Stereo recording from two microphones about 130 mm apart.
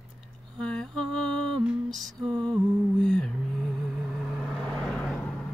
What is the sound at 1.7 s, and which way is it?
Music, centre (ahead or behind).